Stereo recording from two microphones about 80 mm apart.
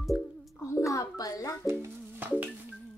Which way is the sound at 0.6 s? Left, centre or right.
Left.